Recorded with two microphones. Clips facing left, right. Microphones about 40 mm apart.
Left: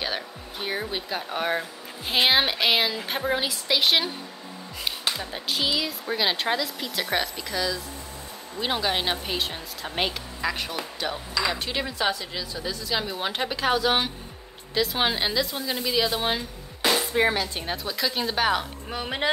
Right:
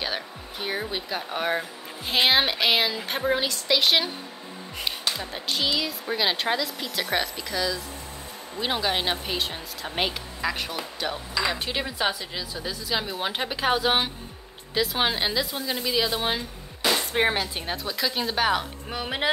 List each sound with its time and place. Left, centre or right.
0.0 s speech: centre
5.1 s speech: centre
17.1 s speech: right
17.6 s speech: centre